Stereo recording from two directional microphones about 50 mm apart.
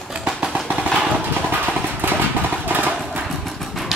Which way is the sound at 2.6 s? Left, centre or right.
Right.